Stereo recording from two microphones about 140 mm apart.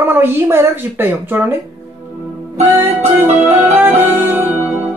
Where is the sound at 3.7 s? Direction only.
15° right (ahead or behind).